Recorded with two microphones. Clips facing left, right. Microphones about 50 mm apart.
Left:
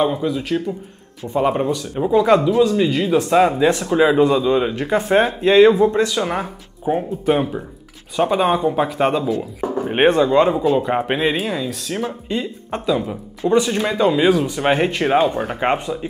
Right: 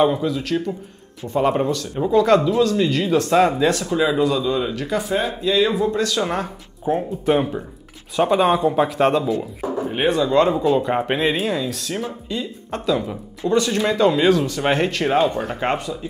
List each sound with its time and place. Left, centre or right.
0.0 s speech: centre
3.9 s speech: left
5.0 s speech: left
6.0 s speech: centre
9.8 s speech: left
10.3 s speech: centre
12.0 s speech: left
12.8 s speech: centre
13.4 s speech: left
13.7 s speech: centre